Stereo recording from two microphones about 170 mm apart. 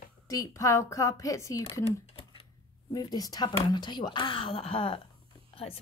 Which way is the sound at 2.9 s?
20° left (ahead or behind).